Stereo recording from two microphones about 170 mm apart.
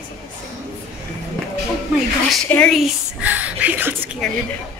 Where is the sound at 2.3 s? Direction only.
5° left (ahead or behind); by 4.2 s 10° right (ahead or behind).